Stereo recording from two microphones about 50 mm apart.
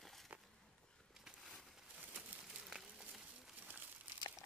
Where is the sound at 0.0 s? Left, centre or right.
Centre.